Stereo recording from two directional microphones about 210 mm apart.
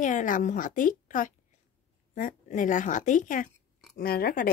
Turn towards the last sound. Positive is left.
turn(degrees=45)  # may be behind; listen again after turning